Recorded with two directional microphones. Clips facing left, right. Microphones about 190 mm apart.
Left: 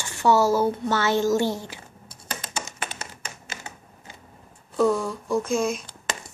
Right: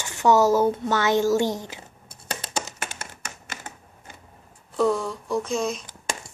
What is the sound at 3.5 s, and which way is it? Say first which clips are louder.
Typing: even; 50° right (ahead or behind).